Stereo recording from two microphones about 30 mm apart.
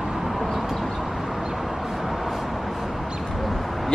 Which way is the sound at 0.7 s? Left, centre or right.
Centre.